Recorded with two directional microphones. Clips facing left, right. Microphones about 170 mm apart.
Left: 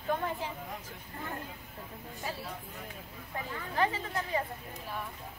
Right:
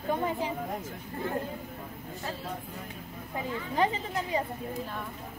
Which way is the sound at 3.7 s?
20° right (ahead or behind).